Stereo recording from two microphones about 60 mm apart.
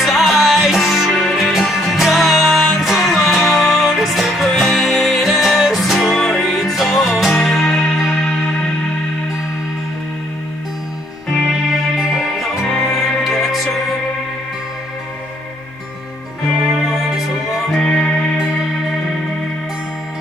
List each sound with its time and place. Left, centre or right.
0.0 s music: centre
12.1 s music: centre
16.4 s music: centre
17.7 s music: centre